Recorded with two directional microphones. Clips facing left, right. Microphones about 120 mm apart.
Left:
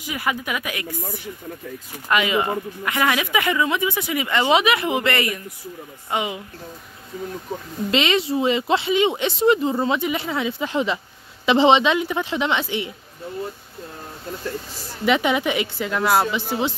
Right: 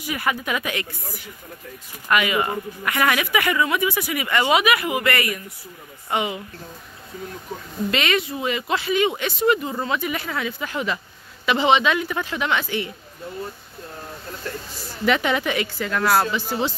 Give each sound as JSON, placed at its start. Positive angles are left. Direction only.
{"t": 0.0, "sound": "speech", "side_deg": 15}
{"t": 2.0, "sound": "speech", "side_deg": 25}
{"t": 7.9, "sound": "speech", "side_deg": 25}
{"t": 15.0, "sound": "speech", "side_deg": 15}